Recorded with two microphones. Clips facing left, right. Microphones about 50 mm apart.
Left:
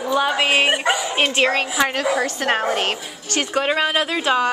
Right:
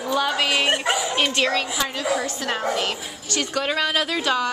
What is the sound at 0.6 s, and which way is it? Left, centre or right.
Speech, centre.